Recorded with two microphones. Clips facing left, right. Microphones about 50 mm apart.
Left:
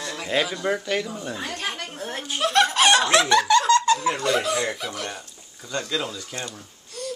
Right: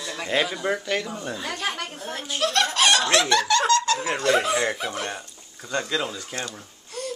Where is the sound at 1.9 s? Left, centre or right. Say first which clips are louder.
Left 1 dB; left.